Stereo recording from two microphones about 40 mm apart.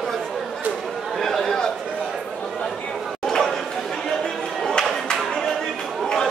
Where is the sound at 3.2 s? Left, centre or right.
Centre.